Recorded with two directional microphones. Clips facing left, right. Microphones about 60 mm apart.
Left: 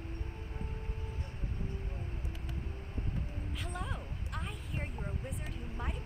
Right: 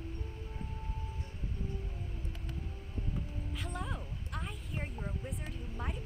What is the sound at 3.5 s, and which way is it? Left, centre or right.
A woman's voice, centre.